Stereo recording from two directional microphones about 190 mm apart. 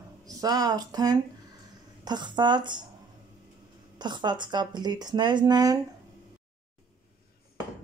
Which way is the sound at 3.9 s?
25° right (ahead or behind).